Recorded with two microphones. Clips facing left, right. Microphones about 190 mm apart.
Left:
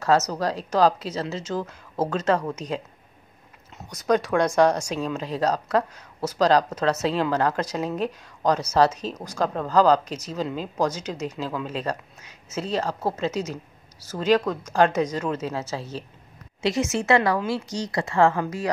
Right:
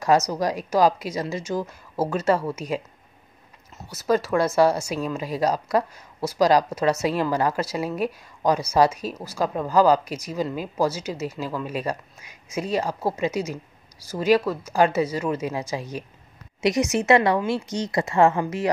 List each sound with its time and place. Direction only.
0.0 s a woman's voice: 15° right (ahead or behind)